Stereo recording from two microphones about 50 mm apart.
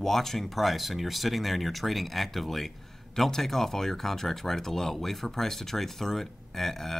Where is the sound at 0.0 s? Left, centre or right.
Centre.